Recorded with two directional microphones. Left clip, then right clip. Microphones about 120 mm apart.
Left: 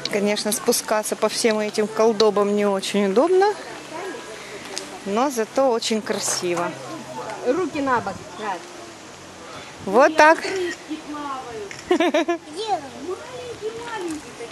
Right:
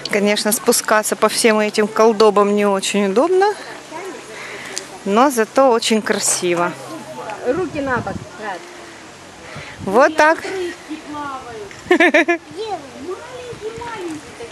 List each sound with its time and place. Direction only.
0.1 s speech: 10° right (ahead or behind)
4.7 s speech: 20° right (ahead or behind)
7.4 s speech: 20° left (ahead or behind)
9.9 s speech: 5° right (ahead or behind)
11.9 s speech: 15° right (ahead or behind)